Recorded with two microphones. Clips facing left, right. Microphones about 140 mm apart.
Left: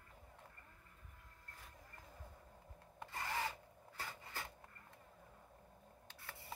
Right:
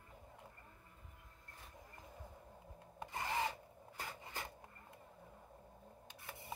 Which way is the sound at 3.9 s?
15° right (ahead or behind).